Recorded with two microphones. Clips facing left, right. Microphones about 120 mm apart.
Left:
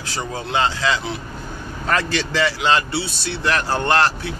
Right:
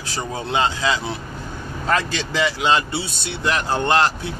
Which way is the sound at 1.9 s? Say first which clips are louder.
Left 1 dB; 20° right (ahead or behind).